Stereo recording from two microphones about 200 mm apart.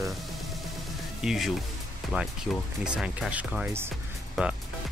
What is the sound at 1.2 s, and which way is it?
Speech, centre (ahead or behind).